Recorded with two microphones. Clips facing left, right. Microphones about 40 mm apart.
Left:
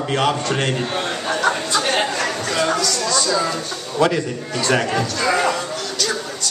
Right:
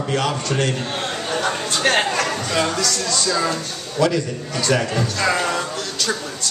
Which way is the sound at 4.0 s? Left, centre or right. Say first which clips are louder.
Left 1 dB; centre.